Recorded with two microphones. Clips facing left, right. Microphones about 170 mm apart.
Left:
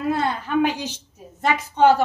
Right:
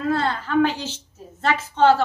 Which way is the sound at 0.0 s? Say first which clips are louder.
Even; 15° left (ahead or behind).